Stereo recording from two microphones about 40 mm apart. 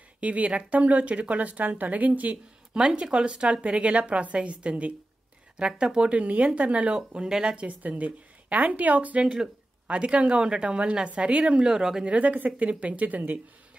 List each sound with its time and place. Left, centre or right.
0.2 s speech: right
3.0 s a woman's voice: right
5.6 s speech: right
7.2 s speech: centre
7.5 s speech: right
9.2 s a woman's voice: right
9.8 s a woman's voice: right
11.7 s speech: centre
12.0 s speech: right